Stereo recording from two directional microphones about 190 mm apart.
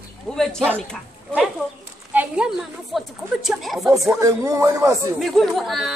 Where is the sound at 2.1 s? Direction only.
10° right (ahead or behind).